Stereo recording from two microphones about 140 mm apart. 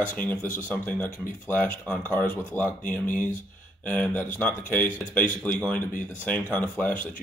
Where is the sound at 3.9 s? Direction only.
10° left (ahead or behind).